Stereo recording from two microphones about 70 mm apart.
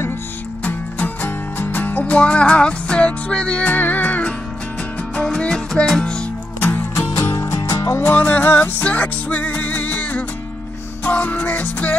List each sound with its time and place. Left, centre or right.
0.7 s music: left
5.4 s music: centre
7.6 s music: left
8.1 s music: left